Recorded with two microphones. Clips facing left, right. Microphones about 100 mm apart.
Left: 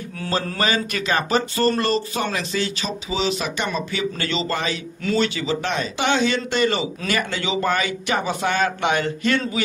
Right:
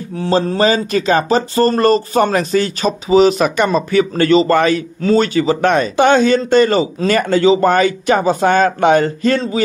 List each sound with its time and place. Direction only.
0.2 s speech: 25° right (ahead or behind); by 4.8 s 50° right (ahead or behind)
5.0 s speech: 40° right (ahead or behind)